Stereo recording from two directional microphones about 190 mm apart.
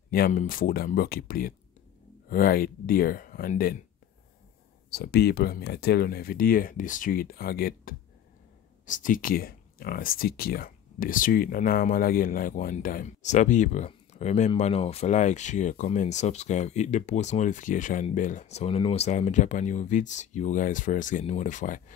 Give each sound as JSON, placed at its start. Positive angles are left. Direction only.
{"t": 0.1, "sound": "speech", "side_deg": 45}
{"t": 4.9, "sound": "speech", "side_deg": 55}